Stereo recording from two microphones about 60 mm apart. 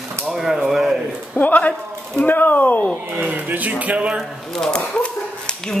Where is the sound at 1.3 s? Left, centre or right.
Left.